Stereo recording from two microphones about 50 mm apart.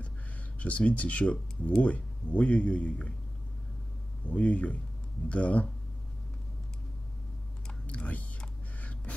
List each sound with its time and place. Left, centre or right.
0.6 s speech: left
4.2 s speech: left
7.8 s whispering: left